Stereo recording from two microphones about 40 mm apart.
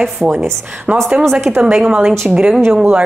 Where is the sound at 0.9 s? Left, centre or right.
Right.